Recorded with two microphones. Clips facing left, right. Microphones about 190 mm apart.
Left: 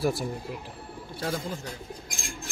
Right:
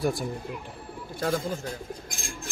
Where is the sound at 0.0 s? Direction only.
Centre (ahead or behind).